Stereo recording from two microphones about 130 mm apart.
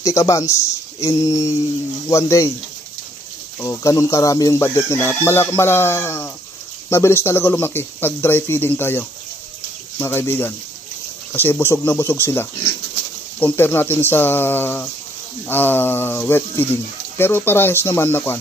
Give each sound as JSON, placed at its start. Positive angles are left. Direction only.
{"t": 0.0, "sound": "speech", "side_deg": 25}
{"t": 3.6, "sound": "speech", "side_deg": 25}